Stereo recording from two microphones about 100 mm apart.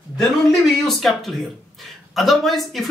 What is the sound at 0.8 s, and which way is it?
Speech, 5° left (ahead or behind).